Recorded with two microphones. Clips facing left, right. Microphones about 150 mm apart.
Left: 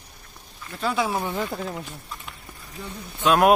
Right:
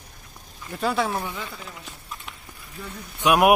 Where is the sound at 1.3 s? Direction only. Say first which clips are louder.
Left 8 dB; 50° left (ahead or behind).